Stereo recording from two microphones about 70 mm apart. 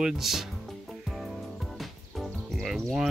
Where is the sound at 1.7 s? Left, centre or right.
Centre.